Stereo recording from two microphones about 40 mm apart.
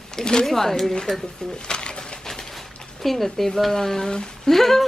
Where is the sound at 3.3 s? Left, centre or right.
Centre.